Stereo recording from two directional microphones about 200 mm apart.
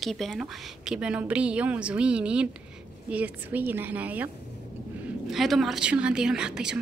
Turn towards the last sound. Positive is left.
turn(degrees=-5)  # may be behind; listen again after turning